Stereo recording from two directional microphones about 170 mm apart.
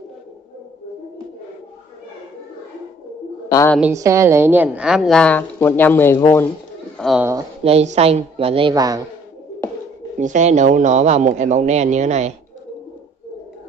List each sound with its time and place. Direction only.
3.4 s bird: 20° left (ahead or behind)
3.9 s a woman's voice: 15° right (ahead or behind); by 6.5 s 15° left (ahead or behind)
7.0 s speech: centre (ahead or behind)
7.6 s a woman's voice: 40° right (ahead or behind); by 9.0 s 20° right (ahead or behind)
10.1 s a man's voice: 45° right (ahead or behind)